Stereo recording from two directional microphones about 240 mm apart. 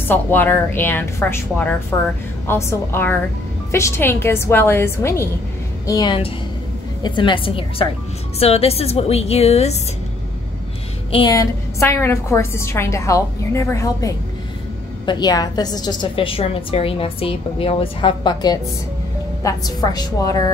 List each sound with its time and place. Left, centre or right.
0.1 s a woman's voice: centre; by 9.8 s left
11.1 s a woman's voice: centre